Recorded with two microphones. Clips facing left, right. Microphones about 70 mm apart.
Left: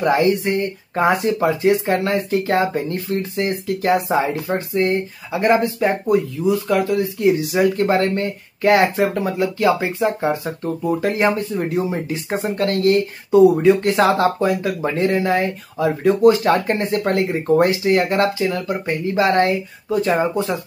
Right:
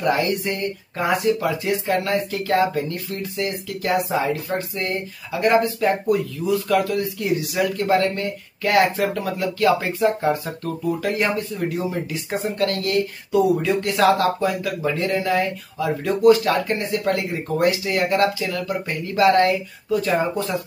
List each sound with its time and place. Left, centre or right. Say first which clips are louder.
0.0 s speech: left 4 dB; left
10.9 s speech: left 4 dB; left